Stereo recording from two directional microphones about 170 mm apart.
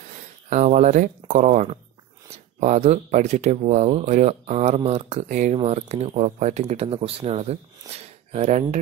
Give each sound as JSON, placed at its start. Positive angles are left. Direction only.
{"t": 0.5, "sound": "speech", "side_deg": -45}